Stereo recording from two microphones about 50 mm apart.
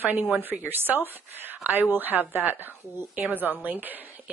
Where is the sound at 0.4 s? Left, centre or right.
Right.